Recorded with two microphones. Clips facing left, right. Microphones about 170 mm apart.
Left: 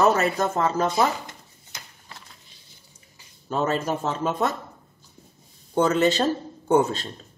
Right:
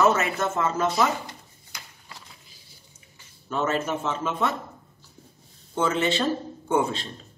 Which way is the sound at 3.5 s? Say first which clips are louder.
Left 2 dB; 35° left (ahead or behind).